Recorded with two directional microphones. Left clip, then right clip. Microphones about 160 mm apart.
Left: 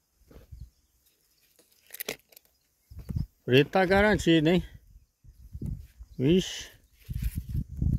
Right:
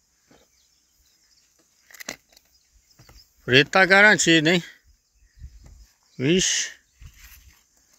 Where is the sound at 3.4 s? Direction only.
20° left (ahead or behind).